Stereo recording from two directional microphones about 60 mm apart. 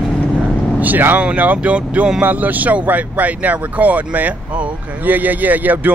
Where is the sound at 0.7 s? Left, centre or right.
Right.